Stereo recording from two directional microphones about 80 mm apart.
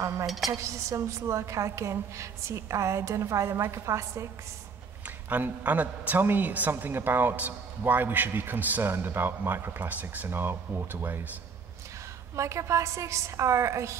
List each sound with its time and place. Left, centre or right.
0.5 s a woman's voice: right
5.0 s a woman's voice: right
12.4 s a woman's voice: right